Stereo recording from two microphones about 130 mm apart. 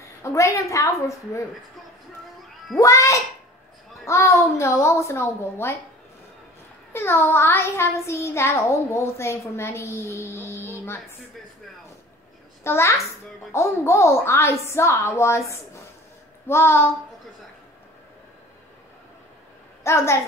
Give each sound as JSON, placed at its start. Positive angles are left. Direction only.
{"t": 0.0, "sound": "child singing", "side_deg": 25}
{"t": 2.8, "sound": "child singing", "side_deg": 25}
{"t": 6.9, "sound": "child singing", "side_deg": 20}
{"t": 12.6, "sound": "child singing", "side_deg": 20}
{"t": 19.8, "sound": "a woman's voice", "side_deg": 20}